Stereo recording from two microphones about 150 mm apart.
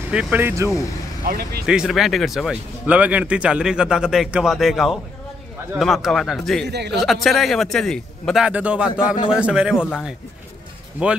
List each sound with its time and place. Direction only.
0.1 s speech: 10° right (ahead or behind)
1.2 s speech: 90° right
1.7 s speech: 5° right (ahead or behind)
6.6 s speech: 90° right
7.0 s speech: centre (ahead or behind)